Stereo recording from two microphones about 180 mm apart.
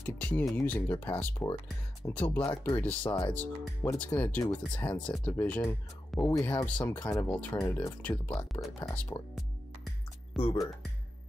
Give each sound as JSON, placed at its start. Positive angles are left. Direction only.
{"t": 0.0, "sound": "speech", "side_deg": 10}
{"t": 3.1, "sound": "speech", "side_deg": 20}
{"t": 3.3, "sound": "speech", "side_deg": 10}
{"t": 9.1, "sound": "speech", "side_deg": 15}
{"t": 10.3, "sound": "speech", "side_deg": 30}